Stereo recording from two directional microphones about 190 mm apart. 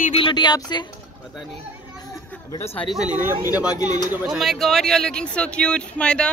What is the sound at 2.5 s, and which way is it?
Speech, 15° left (ahead or behind).